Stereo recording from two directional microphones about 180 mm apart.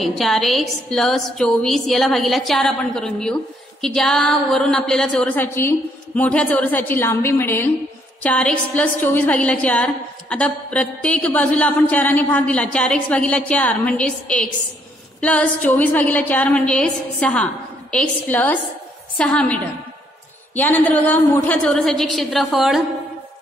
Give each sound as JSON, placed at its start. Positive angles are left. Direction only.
{"t": 0.0, "sound": "a woman's voice", "side_deg": 0}
{"t": 3.8, "sound": "a sound", "side_deg": 5}
{"t": 19.1, "sound": "a woman's voice", "side_deg": 5}